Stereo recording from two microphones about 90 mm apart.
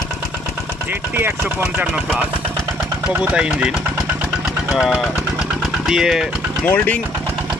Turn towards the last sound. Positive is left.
turn(degrees=20)  # may be behind; listen again after turning